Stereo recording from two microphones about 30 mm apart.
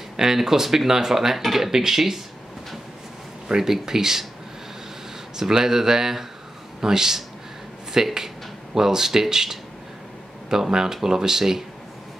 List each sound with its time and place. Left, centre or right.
0.2 s speech: centre
1.7 s speech: centre
3.5 s speech: centre
5.4 s speech: centre